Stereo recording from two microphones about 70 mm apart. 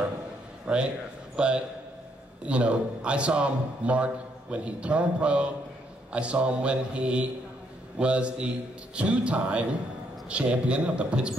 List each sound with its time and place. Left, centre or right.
0.7 s a man's voice: centre